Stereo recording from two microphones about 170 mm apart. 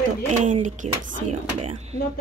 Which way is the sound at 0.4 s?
45° right (ahead or behind).